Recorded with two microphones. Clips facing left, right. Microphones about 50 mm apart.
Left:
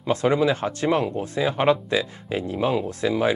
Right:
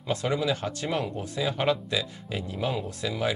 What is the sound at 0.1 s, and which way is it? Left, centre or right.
Speech, left.